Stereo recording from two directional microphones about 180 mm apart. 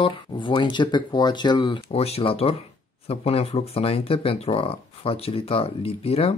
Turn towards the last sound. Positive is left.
turn(degrees=35)  # may be behind; listen again after turning